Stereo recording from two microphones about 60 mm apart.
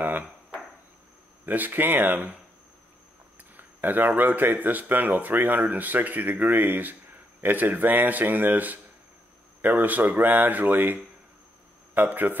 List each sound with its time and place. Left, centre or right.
1.4 s speech: right
3.5 s a sound: right
4.2 s a man's voice: right
9.8 s speech: right